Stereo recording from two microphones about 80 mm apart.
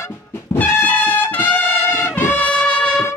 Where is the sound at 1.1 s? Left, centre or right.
Left.